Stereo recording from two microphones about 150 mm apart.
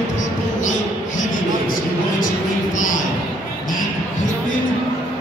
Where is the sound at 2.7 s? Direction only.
60° left (ahead or behind).